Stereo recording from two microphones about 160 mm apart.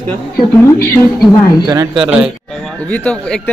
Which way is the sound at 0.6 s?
15° left (ahead or behind).